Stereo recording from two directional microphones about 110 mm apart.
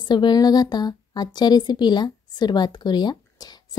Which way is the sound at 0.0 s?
40° left (ahead or behind).